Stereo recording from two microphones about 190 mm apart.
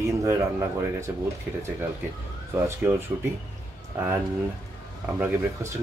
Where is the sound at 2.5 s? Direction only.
15° right (ahead or behind).